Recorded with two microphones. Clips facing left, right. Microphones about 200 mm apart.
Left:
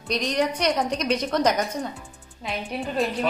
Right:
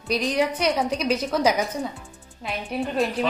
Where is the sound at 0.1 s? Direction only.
5° right (ahead or behind).